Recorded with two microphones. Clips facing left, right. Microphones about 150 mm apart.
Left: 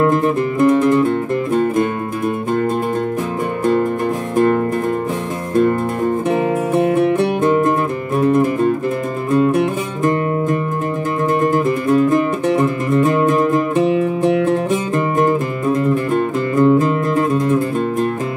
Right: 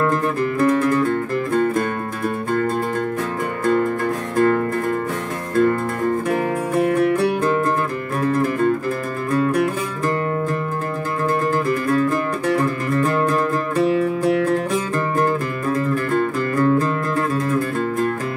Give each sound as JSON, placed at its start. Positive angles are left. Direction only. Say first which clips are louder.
{"t": 0.0, "sound": "music", "louder": "left 5 dB", "side_deg": 20}
{"t": 4.4, "sound": "music", "louder": "left 3 dB", "side_deg": 25}